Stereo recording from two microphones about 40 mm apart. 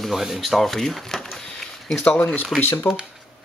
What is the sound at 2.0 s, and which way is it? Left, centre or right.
Speech, left.